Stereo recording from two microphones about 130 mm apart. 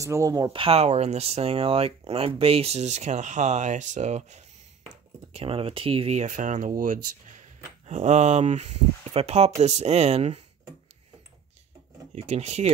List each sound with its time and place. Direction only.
0.0 s speech: 25° right (ahead or behind)
0.6 s speech: 50° right (ahead or behind)
5.3 s speech: 45° right (ahead or behind)
12.2 s speech: 55° right (ahead or behind)